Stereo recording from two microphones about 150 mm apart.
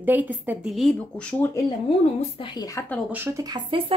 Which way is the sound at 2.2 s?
35° left (ahead or behind).